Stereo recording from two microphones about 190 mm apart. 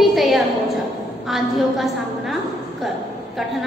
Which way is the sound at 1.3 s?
Centre (ahead or behind).